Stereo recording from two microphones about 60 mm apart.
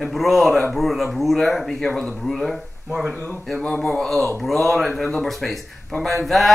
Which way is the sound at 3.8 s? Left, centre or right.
Centre.